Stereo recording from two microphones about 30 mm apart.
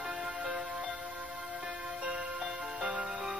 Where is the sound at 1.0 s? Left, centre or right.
Right.